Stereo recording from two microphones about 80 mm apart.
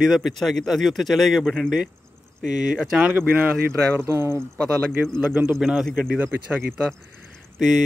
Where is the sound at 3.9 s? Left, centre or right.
Right.